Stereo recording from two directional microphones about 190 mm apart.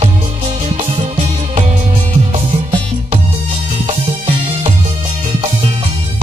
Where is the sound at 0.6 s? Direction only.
30° right (ahead or behind).